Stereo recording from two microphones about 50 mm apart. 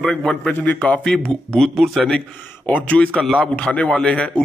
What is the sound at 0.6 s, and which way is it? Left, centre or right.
Speech, left.